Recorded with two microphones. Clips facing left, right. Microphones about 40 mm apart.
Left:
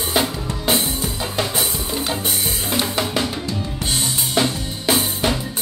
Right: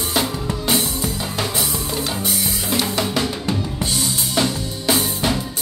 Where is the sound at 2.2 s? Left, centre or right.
Left.